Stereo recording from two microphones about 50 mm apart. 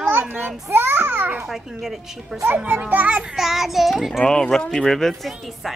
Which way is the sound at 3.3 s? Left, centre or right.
Centre.